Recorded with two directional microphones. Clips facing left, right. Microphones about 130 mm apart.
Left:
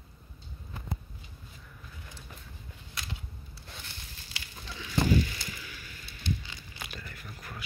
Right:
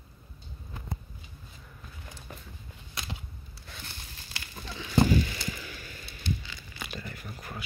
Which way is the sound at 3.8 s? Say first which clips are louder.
Right 2 dB; 40° right (ahead or behind).